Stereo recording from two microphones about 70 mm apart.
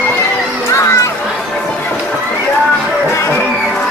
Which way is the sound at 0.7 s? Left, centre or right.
Left.